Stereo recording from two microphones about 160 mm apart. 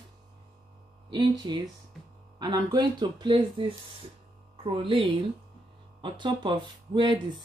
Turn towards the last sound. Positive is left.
turn(degrees=-30)  # may be behind; listen again after turning